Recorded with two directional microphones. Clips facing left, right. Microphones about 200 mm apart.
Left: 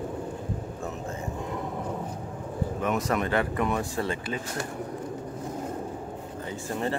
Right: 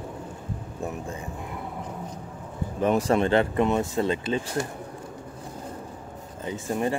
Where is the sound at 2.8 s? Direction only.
30° right (ahead or behind).